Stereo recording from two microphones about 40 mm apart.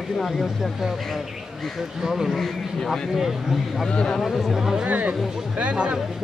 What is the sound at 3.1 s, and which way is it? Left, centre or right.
Speech, centre.